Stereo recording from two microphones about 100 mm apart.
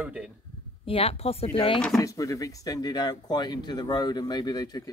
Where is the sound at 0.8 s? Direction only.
75° left (ahead or behind).